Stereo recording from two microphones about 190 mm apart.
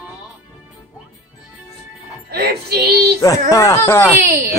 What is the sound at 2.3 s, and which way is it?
Music, 55° right (ahead or behind).